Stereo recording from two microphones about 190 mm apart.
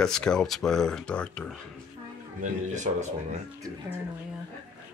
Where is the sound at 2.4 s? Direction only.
40° right (ahead or behind).